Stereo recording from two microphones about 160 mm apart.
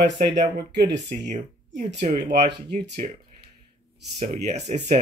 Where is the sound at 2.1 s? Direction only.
85° right.